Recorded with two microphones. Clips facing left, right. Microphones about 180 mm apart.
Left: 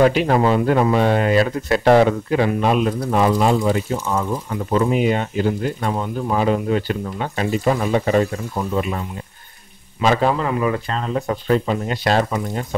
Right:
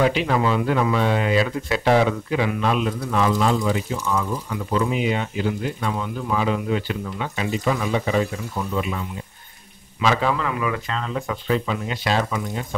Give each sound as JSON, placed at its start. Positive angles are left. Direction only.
{"t": 0.0, "sound": "speech", "side_deg": 45}